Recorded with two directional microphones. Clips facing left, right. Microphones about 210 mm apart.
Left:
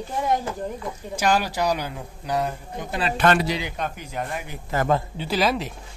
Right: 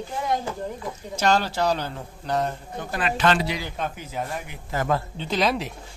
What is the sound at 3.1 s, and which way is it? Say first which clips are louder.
Speech: left 2 dB; 55° left (ahead or behind).